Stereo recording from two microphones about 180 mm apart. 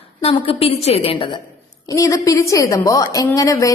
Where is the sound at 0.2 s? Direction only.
30° left (ahead or behind).